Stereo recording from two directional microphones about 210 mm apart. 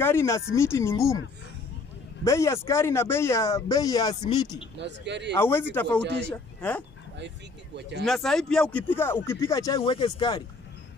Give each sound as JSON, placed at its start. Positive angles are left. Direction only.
{"t": 0.0, "sound": "speech", "side_deg": 15}
{"t": 2.2, "sound": "speech", "side_deg": 15}
{"t": 4.7, "sound": "speech", "side_deg": -55}
{"t": 5.4, "sound": "speech", "side_deg": 10}
{"t": 7.2, "sound": "speech", "side_deg": -55}
{"t": 8.0, "sound": "speech", "side_deg": 0}